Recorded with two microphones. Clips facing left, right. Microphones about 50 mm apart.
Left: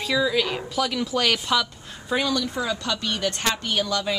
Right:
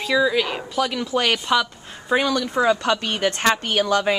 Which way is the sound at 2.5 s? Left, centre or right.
Right.